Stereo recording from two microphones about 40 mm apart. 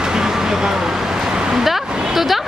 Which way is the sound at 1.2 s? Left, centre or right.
Centre.